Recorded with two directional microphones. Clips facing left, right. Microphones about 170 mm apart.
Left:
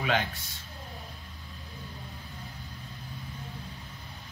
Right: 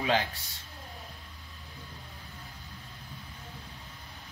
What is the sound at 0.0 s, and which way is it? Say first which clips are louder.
Speech: right 1 dB; 35° right (ahead or behind).